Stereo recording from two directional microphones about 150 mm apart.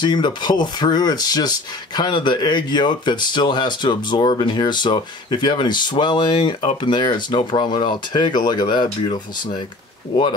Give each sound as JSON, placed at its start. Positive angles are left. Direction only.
{"t": 0.0, "sound": "speech", "side_deg": 30}